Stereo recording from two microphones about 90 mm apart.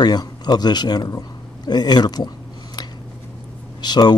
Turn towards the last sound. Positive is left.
turn(degrees=50)  # may be behind; listen again after turning